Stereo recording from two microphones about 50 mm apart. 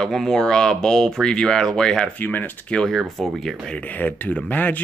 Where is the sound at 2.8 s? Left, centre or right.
Centre.